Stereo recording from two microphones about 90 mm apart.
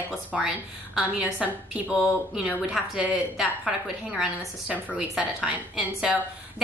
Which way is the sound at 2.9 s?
10° right (ahead or behind).